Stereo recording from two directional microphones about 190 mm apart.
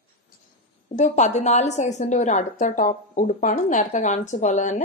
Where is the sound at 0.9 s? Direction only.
40° left (ahead or behind).